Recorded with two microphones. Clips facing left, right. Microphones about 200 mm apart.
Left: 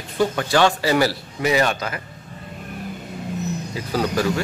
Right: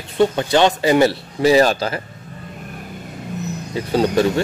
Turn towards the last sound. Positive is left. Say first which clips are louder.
# right 5 dB
turn(degrees=-25)  # may be behind; listen again after turning